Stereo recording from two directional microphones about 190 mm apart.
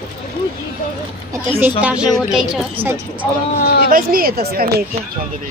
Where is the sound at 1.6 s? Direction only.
5° right (ahead or behind).